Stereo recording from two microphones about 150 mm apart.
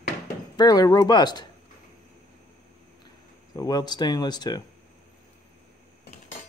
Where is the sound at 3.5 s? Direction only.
25° left (ahead or behind).